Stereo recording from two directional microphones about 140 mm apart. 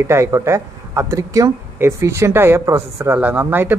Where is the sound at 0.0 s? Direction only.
20° right (ahead or behind).